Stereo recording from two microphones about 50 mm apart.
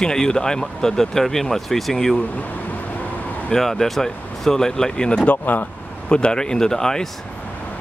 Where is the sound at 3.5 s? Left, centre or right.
Centre.